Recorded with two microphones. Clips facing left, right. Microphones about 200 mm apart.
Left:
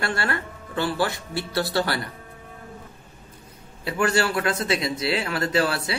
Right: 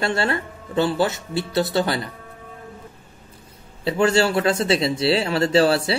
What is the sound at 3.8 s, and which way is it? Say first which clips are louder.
Speech: right 5 dB; 25° right (ahead or behind).